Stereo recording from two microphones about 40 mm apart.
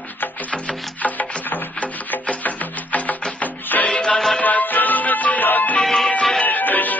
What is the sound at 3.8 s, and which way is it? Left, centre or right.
Music, left.